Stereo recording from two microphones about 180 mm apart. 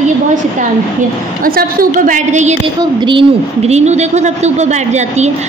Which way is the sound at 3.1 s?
30° right (ahead or behind).